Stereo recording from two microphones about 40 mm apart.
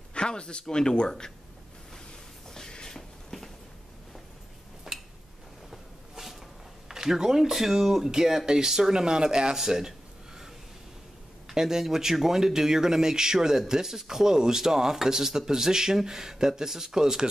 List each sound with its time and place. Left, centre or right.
0.1 s speech: left
2.5 s a sound: centre
4.9 s tick-tock: centre
5.7 s train: centre
6.9 s speech: centre
11.4 s speech: centre